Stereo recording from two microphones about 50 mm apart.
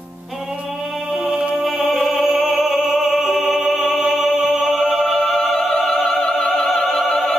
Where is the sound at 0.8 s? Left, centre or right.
Centre.